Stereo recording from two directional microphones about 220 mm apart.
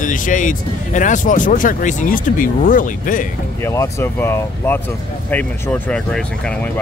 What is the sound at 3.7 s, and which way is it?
Speech, 15° left (ahead or behind).